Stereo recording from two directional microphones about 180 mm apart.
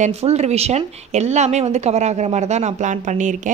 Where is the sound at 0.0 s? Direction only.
35° right (ahead or behind).